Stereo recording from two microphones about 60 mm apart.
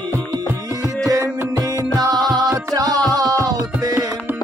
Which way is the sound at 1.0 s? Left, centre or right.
Right.